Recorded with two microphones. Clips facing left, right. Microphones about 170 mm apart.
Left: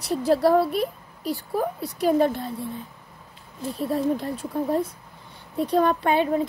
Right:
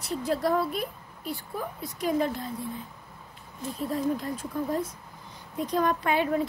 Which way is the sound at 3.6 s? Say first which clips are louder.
Left 4 dB; 30° left (ahead or behind).